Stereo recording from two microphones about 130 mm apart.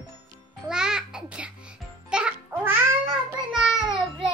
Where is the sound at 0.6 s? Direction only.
5° right (ahead or behind).